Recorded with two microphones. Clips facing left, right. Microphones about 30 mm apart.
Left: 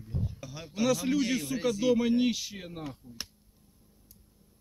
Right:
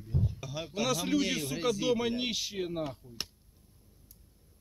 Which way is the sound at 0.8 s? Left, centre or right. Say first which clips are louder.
Left 3 dB; right.